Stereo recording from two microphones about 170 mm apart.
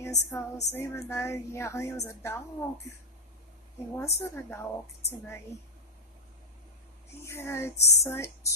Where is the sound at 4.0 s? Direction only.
15° left (ahead or behind).